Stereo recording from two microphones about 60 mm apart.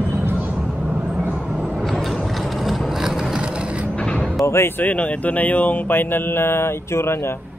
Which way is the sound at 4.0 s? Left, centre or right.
Centre.